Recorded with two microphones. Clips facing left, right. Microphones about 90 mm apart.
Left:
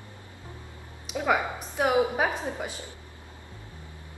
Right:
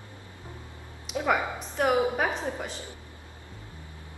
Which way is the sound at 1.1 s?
10° left (ahead or behind).